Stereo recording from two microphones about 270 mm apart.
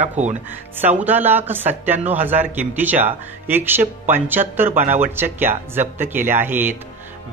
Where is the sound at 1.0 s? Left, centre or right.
Centre.